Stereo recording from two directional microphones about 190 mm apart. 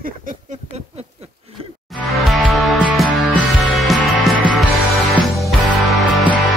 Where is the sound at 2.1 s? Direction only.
Centre (ahead or behind).